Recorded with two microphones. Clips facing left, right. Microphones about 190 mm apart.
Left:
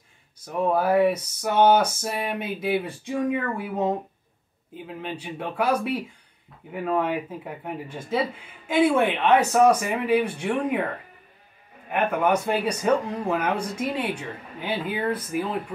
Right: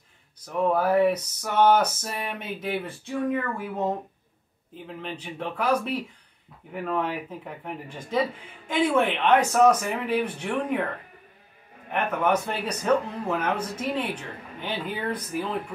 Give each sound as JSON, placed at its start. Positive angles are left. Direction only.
{"t": 0.5, "sound": "speech", "side_deg": 10}
{"t": 11.9, "sound": "speech", "side_deg": 10}